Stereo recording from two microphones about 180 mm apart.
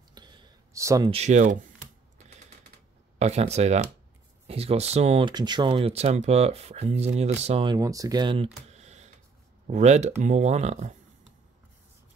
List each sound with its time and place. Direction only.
0.1 s a sound: 25° right (ahead or behind)
1.1 s speech: 40° right (ahead or behind)
3.2 s speech: 40° right (ahead or behind)
7.7 s speech: 20° right (ahead or behind); by 11.0 s 40° right (ahead or behind)